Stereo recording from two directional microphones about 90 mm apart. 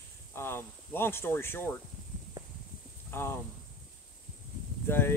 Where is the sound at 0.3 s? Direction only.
25° left (ahead or behind).